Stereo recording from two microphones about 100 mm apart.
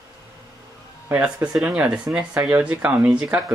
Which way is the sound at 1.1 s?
10° right (ahead or behind).